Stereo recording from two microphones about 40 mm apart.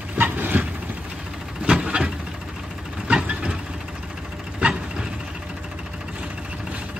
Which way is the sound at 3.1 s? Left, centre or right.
Right.